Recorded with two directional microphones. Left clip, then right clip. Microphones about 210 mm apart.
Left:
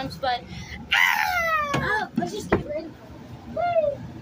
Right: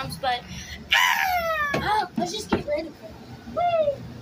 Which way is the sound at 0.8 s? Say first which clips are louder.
Even; centre (ahead or behind).